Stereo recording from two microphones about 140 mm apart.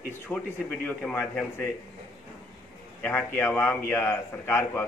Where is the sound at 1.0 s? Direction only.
10° left (ahead or behind).